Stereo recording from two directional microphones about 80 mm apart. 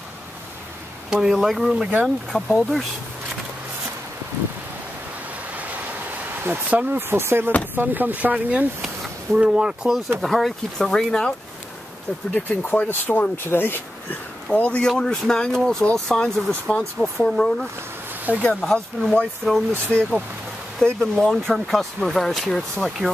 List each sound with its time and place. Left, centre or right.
1.1 s speech: centre
6.4 s speech: right
8.8 s speech: centre
10.2 s speech: centre
12.4 s speech: centre
14.5 s speech: centre